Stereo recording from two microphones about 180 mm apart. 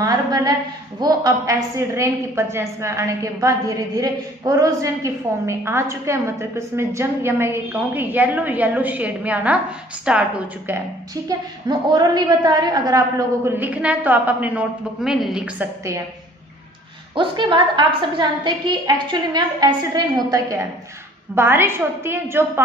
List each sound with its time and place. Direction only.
0.0 s a woman's voice: 20° right (ahead or behind)
11.2 s a woman's voice: 20° right (ahead or behind)
17.1 s a woman's voice: 25° right (ahead or behind)